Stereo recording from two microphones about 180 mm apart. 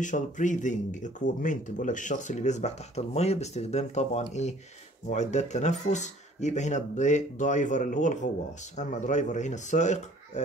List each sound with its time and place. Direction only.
0.0 s speech: 45° left (ahead or behind)